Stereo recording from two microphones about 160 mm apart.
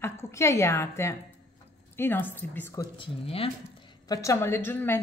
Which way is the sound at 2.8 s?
35° left (ahead or behind).